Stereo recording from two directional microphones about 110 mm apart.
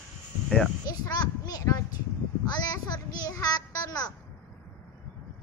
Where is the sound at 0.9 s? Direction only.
35° left (ahead or behind).